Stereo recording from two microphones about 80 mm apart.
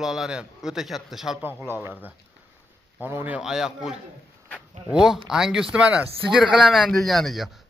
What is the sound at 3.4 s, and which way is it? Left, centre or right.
Speech, centre.